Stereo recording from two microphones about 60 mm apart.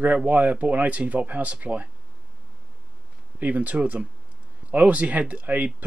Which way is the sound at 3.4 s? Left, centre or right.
Right.